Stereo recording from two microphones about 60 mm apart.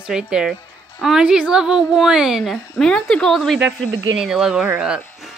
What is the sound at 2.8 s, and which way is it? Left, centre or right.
Speech, centre.